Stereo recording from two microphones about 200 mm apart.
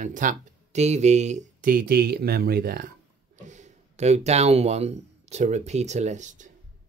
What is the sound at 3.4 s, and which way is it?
Speech, 35° right (ahead or behind).